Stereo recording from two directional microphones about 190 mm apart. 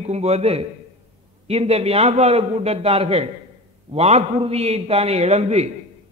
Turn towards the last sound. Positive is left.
turn(degrees=-35)  # may be behind; listen again after turning